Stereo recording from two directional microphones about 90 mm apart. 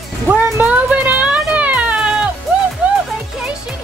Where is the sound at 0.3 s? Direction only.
15° right (ahead or behind).